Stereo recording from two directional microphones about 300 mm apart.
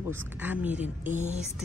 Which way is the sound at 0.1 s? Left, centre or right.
Centre.